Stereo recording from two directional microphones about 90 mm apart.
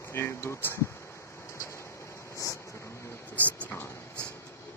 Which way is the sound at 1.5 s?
30° left (ahead or behind).